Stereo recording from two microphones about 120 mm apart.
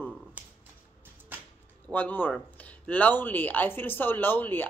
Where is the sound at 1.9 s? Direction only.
15° left (ahead or behind).